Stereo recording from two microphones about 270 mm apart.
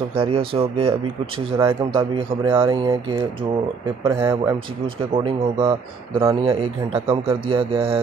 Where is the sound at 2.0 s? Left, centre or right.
Centre.